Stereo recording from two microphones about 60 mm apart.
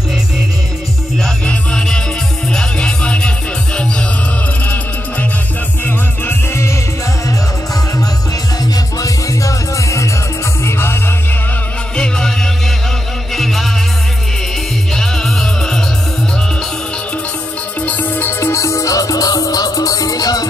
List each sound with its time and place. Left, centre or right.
1.4 s music: centre
5.9 s music: left
8.7 s music: left
10.6 s music: left
12.0 s music: centre
15.0 s music: centre
17.8 s music: left
18.2 s music: left